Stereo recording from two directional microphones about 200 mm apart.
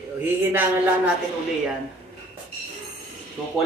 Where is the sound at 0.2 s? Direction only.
10° right (ahead or behind).